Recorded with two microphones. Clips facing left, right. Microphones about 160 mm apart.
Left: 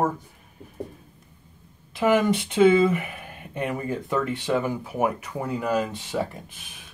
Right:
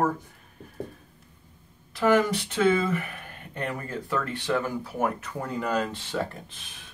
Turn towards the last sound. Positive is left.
turn(degrees=10)  # may be behind; listen again after turning